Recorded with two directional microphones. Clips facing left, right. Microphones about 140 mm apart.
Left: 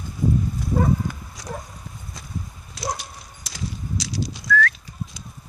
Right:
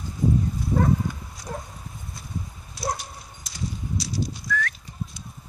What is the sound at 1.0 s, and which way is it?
Dog, 90° left.